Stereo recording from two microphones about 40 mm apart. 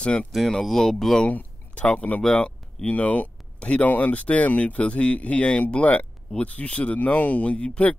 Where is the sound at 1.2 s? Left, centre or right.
Left.